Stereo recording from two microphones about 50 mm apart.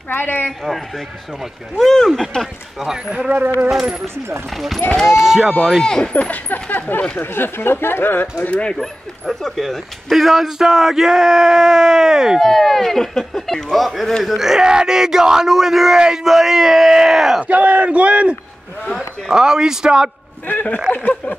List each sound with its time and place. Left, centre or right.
0.1 s speech: left
0.7 s speech: centre
3.1 s speech: right
5.0 s speech: centre
5.6 s speech: centre
5.9 s speech: left
8.5 s speech: left
8.7 s speech: centre
12.4 s speech: centre
17.5 s speech: right
18.9 s speech: centre
20.5 s speech: left